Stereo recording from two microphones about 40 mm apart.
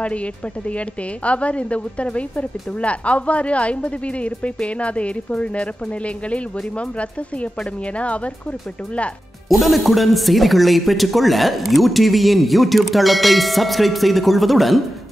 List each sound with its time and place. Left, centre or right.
0.0 s a woman's voice: left
9.5 s speech: centre